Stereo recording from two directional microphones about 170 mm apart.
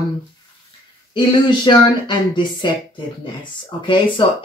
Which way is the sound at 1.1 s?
25° left (ahead or behind).